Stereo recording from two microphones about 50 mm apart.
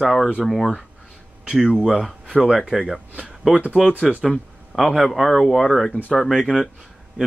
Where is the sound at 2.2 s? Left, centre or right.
Centre.